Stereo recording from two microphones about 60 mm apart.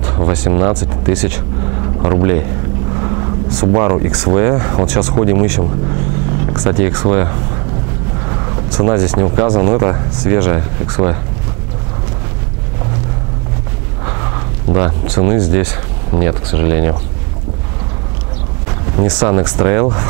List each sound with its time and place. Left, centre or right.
0.0 s speech: centre
3.6 s speech: right
8.7 s speech: centre
14.0 s speech: right
18.7 s speech: centre